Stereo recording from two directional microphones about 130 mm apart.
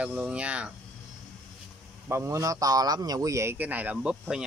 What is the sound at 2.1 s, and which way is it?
Speech, 20° right (ahead or behind).